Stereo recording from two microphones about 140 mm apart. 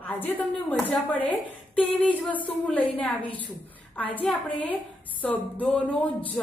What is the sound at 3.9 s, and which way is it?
A woman's voice, 10° left (ahead or behind).